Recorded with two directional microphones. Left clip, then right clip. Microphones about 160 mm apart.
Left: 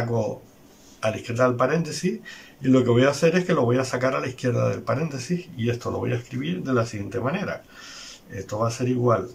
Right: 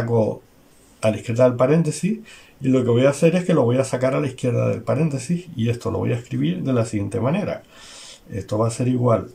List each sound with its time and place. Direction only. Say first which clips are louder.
1.0 s speech: right 5 dB; 25° right (ahead or behind)